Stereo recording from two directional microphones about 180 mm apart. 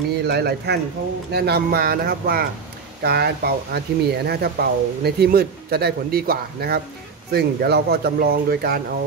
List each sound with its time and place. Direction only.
0.3 s speech: 65° right (ahead or behind)